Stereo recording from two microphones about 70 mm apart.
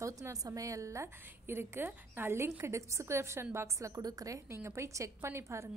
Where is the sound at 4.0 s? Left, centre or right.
Right.